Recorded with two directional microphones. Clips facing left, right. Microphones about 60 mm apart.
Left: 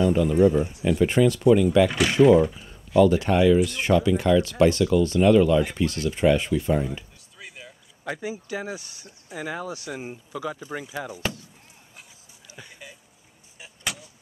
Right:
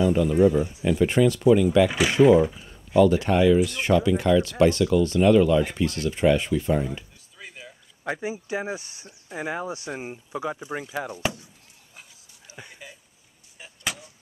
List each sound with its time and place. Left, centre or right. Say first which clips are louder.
0.4 s speech: even; centre
8.0 s speech: right 2 dB; centre
9.0 s speech: right 1 dB; centre
12.6 s a sound: right 1 dB; centre
13.6 s vehicle: right 1 dB; centre